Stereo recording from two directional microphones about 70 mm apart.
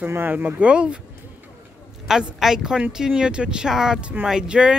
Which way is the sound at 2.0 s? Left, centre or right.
Centre.